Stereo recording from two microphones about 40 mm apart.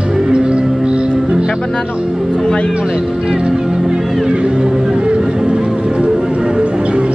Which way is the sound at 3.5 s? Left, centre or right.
Centre.